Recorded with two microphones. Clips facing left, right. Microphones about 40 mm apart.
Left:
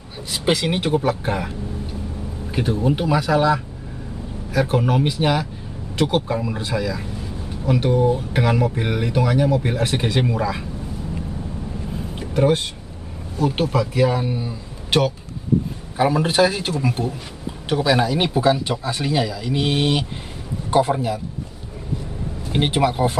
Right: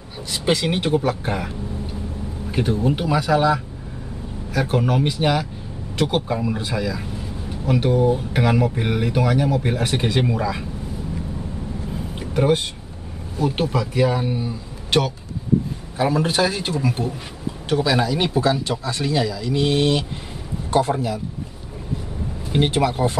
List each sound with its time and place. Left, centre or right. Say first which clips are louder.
0.3 s speech: even; centre
2.5 s speech: even; centre
12.2 s speech: left 1 dB; centre
17.0 s speech: left 1 dB; left
17.6 s speech: left 1 dB; centre
22.5 s speech: even; centre